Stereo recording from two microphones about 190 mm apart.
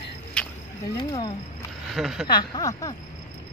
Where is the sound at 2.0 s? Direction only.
Centre (ahead or behind).